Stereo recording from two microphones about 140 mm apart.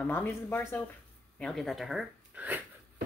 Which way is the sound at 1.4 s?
5° left (ahead or behind).